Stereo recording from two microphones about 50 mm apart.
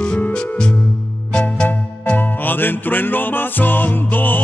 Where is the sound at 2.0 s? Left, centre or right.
Left.